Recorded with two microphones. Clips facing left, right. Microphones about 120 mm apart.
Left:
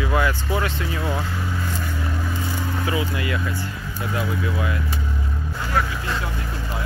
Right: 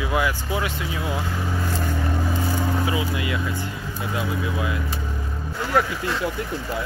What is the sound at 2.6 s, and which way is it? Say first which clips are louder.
Speech: left 2 dB; 20° right (ahead or behind).